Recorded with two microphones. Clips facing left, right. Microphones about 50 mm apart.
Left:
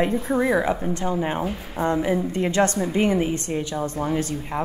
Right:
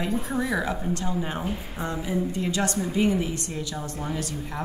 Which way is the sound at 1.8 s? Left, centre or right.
Left.